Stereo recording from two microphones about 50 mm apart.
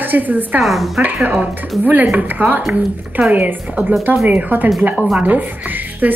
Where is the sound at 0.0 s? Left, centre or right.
Right.